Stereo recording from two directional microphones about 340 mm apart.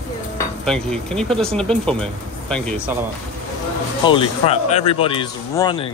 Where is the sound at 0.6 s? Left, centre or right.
Centre.